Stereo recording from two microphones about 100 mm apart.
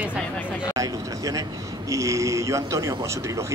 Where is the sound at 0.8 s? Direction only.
35° right (ahead or behind).